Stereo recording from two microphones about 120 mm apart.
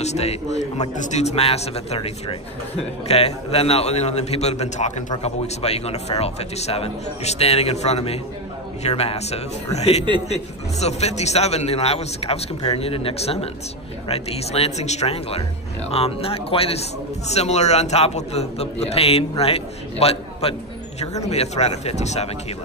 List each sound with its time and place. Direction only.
0.0 s a man's voice: 65° left (ahead or behind)
5.2 s a man's voice: 60° left (ahead or behind)
17.3 s a man's voice: 65° left (ahead or behind)